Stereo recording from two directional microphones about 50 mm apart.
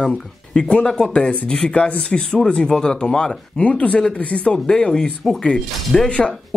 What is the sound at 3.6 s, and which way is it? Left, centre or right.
Speech, left.